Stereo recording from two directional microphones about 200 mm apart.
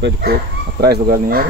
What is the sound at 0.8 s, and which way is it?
Speech, 50° right (ahead or behind).